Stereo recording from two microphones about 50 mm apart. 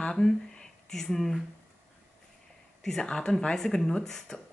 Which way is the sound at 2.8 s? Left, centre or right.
Centre.